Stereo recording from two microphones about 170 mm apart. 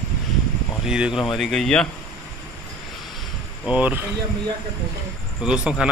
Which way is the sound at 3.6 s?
10° right (ahead or behind).